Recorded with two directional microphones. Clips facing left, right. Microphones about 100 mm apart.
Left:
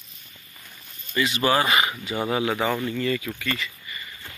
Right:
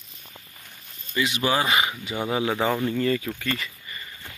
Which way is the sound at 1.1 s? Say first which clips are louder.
Left 2 dB; 10° right (ahead or behind).